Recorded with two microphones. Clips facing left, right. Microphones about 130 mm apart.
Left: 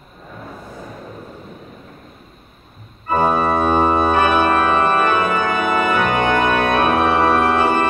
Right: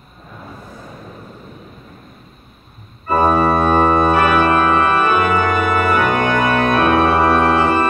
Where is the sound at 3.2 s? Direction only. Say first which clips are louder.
Right 3 dB; 10° left (ahead or behind).